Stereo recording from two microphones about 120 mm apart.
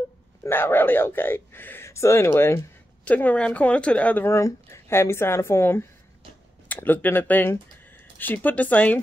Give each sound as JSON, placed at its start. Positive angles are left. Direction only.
{"t": 0.4, "sound": "speech", "side_deg": 20}
{"t": 4.3, "sound": "speech", "side_deg": 25}